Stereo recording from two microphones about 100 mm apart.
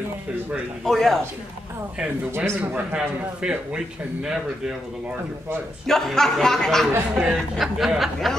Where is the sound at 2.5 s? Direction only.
10° right (ahead or behind).